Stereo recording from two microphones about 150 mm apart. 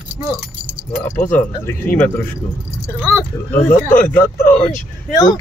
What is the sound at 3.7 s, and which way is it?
Speech, 65° left (ahead or behind).